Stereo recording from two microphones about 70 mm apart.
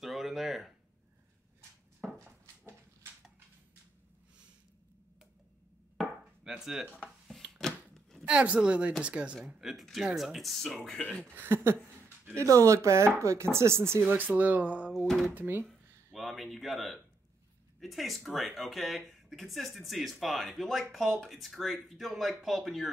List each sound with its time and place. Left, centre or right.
0.0 s a sound: centre
6.4 s speech: centre
7.5 s a sound: centre
8.3 s speech: centre
9.7 s speech: centre
11.3 s speech: right
12.4 s speech: right
16.1 s speech: centre